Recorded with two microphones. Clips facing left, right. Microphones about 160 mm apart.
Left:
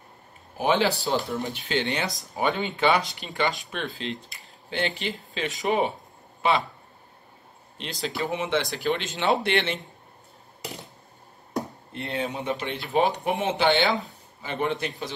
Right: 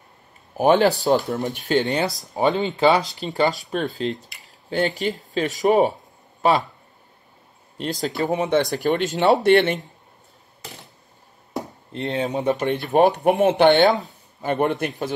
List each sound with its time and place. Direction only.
0.6 s speech: 50° right (ahead or behind)
7.7 s speech: 45° right (ahead or behind)
11.9 s speech: 40° right (ahead or behind)